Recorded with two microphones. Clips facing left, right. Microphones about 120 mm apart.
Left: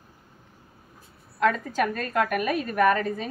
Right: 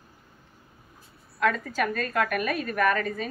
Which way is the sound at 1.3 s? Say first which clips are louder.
Left 2 dB; 25° left (ahead or behind).